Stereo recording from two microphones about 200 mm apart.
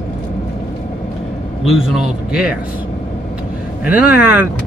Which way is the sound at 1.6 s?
Centre (ahead or behind).